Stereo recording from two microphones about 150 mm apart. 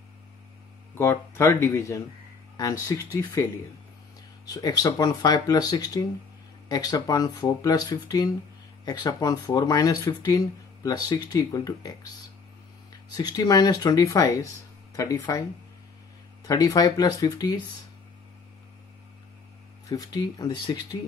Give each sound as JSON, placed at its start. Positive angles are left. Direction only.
{"t": 0.9, "sound": "speech", "side_deg": 15}
{"t": 4.5, "sound": "speech", "side_deg": 25}
{"t": 13.1, "sound": "speech", "side_deg": 25}
{"t": 16.4, "sound": "speech", "side_deg": 25}
{"t": 19.9, "sound": "speech", "side_deg": 25}